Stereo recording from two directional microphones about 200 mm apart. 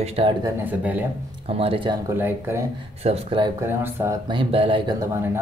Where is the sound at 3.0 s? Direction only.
30° right (ahead or behind).